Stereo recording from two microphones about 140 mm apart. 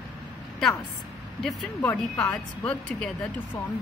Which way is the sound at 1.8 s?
25° left (ahead or behind).